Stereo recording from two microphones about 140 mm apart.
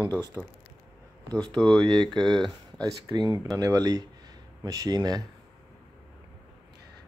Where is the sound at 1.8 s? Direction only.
35° right (ahead or behind).